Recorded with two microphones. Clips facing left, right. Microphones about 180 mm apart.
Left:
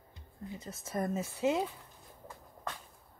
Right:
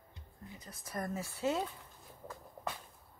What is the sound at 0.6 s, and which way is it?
Speech, 25° left (ahead or behind).